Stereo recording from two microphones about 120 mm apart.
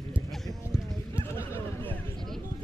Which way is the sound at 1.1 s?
20° left (ahead or behind).